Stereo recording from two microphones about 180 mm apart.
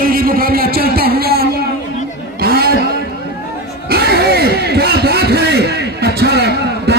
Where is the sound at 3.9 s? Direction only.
60° right (ahead or behind).